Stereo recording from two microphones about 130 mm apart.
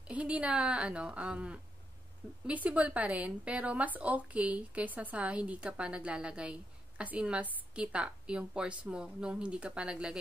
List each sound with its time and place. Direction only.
0.0 s speech: 10° right (ahead or behind)